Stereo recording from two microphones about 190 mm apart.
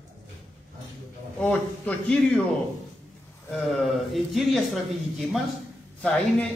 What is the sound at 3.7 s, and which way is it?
Speech, centre (ahead or behind).